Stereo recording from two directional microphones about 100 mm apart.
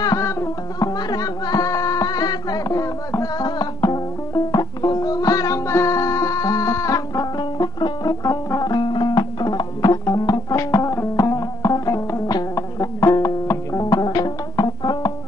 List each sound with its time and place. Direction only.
0.0 s music: 30° left (ahead or behind)
3.4 s music: 45° left (ahead or behind)